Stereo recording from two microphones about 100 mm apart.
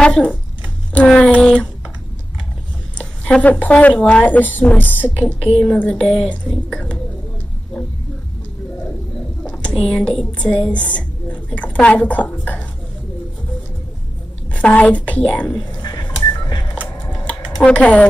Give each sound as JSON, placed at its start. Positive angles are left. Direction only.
{"t": 0.0, "sound": "speech", "side_deg": 5}
{"t": 3.0, "sound": "speech", "side_deg": 10}
{"t": 9.4, "sound": "computer keyboard", "side_deg": 10}
{"t": 9.8, "sound": "a woman's voice", "side_deg": 5}
{"t": 14.5, "sound": "speech", "side_deg": 15}
{"t": 15.8, "sound": "music", "side_deg": 45}
{"t": 17.2, "sound": "computer keyboard", "side_deg": 10}